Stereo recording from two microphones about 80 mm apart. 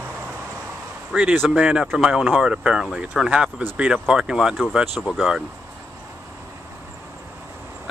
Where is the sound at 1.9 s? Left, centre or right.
Centre.